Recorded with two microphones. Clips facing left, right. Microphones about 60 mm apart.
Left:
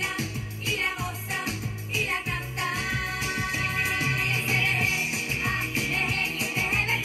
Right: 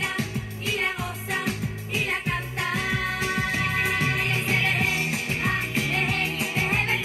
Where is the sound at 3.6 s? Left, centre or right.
Right.